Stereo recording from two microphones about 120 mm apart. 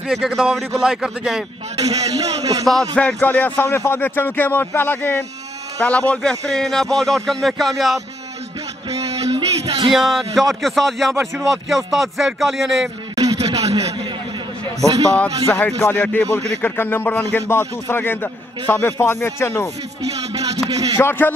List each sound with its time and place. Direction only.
0.1 s a man's voice: centre (ahead or behind)
1.9 s a man's voice: 30° right (ahead or behind)
2.9 s a man's voice: 10° left (ahead or behind)
9.1 s music: 60° right (ahead or behind)
9.9 s a man's voice: centre (ahead or behind)
13.1 s a sound: 30° right (ahead or behind)
14.8 s a man's voice: 30° right (ahead or behind)
15.8 s speech: 15° left (ahead or behind)
20.7 s a man's voice: 30° right (ahead or behind)
21.0 s speech: 15° left (ahead or behind)